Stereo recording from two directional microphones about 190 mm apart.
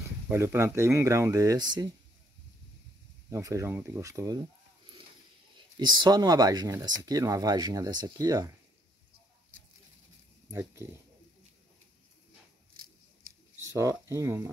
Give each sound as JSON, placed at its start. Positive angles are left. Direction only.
{"t": 0.3, "sound": "speech", "side_deg": -15}
{"t": 3.3, "sound": "speech", "side_deg": -15}
{"t": 5.8, "sound": "speech", "side_deg": -25}
{"t": 10.5, "sound": "speech", "side_deg": -15}
{"t": 13.6, "sound": "speech", "side_deg": -15}